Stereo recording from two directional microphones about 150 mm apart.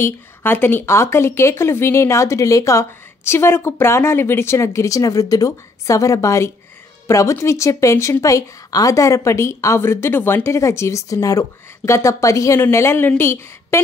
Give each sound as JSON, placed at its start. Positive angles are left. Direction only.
{"t": 0.0, "sound": "a woman's voice", "side_deg": 15}